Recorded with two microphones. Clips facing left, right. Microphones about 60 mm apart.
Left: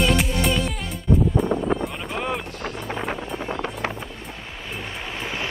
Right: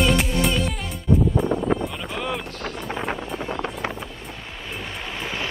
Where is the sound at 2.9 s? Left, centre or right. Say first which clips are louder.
Right 1 dB; centre.